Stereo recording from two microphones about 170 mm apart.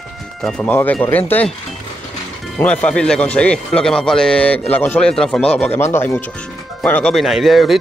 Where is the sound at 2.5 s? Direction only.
5° left (ahead or behind).